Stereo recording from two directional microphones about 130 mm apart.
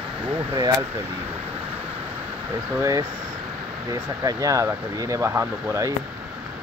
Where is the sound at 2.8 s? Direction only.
25° right (ahead or behind).